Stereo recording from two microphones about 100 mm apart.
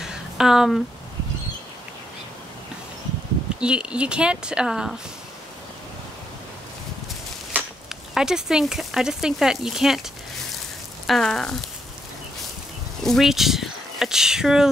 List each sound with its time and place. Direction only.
0.0 s a sound: 5° right (ahead or behind)
3.5 s speech: 10° right (ahead or behind)
7.9 s speech: 5° right (ahead or behind)
11.1 s speech: 5° left (ahead or behind)
13.0 s speech: centre (ahead or behind)